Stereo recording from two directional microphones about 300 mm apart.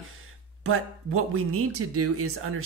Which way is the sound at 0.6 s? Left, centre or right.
Right.